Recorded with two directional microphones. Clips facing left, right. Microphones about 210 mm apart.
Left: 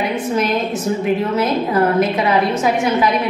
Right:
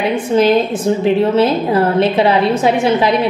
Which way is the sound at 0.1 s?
30° right (ahead or behind).